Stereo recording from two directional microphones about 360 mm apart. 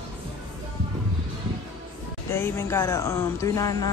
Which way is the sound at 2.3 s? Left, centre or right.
Centre.